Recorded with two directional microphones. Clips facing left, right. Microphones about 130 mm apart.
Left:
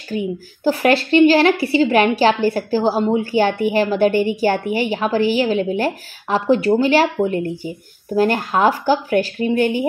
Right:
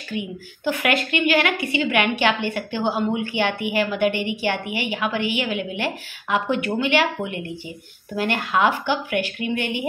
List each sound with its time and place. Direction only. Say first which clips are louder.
0.1 s a woman's voice: left 7 dB; 35° left (ahead or behind)